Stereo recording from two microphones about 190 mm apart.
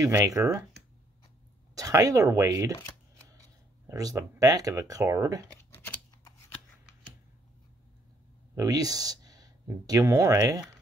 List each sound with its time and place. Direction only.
0.0 s speech: 15° right (ahead or behind)
1.8 s speech: 20° right (ahead or behind)
3.9 s speech: 20° right (ahead or behind)
5.8 s scissors: 10° left (ahead or behind)
8.5 s speech: 20° right (ahead or behind)